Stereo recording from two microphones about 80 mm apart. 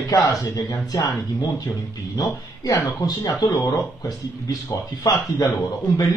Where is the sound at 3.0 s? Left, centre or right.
Left.